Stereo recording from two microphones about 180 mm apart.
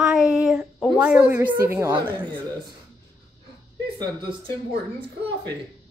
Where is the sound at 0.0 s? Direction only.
5° right (ahead or behind).